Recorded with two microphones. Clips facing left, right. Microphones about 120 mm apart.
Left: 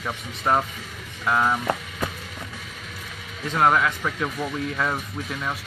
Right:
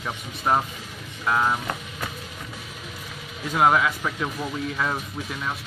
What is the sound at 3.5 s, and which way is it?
Speech, 5° right (ahead or behind).